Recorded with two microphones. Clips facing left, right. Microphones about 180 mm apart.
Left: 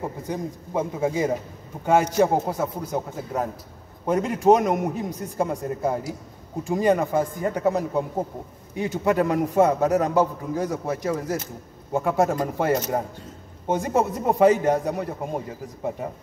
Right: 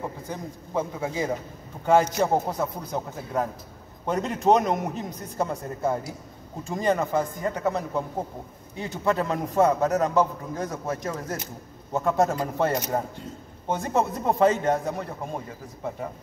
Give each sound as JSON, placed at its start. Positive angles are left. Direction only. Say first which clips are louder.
{"t": 0.3, "sound": "a man's voice", "louder": "left 4 dB", "side_deg": 15}